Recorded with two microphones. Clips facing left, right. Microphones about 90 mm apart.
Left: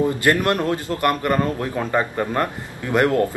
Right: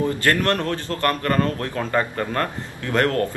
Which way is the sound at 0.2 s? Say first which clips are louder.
Left 2 dB; 15° left (ahead or behind).